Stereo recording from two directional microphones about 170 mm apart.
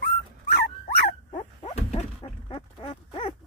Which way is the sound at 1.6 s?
35° left (ahead or behind).